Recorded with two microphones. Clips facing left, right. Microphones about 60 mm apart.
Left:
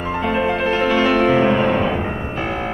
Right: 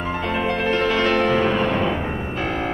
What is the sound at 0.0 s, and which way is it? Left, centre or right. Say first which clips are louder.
Music: left 4 dB; centre.